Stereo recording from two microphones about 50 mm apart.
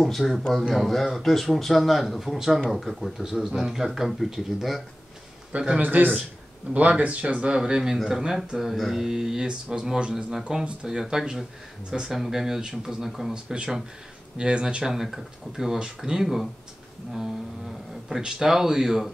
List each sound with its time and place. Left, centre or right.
0.4 s a man's voice: centre
3.2 s a man's voice: centre
5.8 s a man's voice: right
14.9 s speech: centre
18.1 s speech: centre